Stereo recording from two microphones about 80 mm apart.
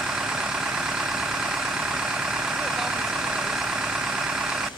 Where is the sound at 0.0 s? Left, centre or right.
Centre.